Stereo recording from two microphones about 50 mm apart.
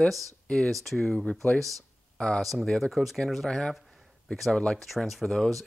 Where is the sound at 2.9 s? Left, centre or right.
Centre.